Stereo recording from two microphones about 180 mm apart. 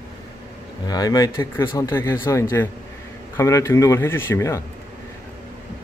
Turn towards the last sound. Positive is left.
turn(degrees=15)  # may be behind; listen again after turning